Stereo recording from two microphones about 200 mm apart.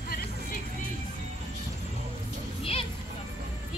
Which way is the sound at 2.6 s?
30° left (ahead or behind).